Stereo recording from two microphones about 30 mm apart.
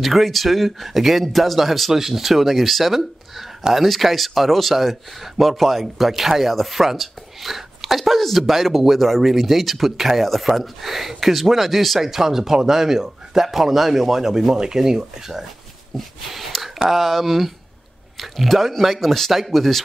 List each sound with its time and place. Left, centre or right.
0.0 s speech: centre
12.0 s speech: centre
16.6 s speech: centre